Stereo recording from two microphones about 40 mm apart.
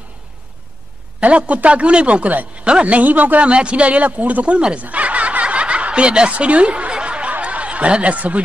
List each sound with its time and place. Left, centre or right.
1.2 s speech: right
3.4 s speech: right
4.6 s speech: right
4.8 s snicker: right